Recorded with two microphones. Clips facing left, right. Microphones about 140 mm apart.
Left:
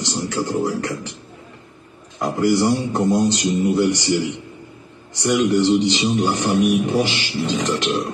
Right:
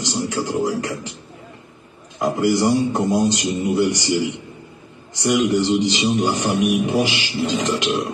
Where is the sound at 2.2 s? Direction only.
15° right (ahead or behind).